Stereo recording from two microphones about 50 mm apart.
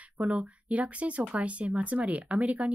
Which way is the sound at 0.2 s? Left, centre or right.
Right.